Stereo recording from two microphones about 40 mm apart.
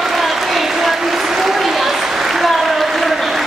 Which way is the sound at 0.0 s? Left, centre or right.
Centre.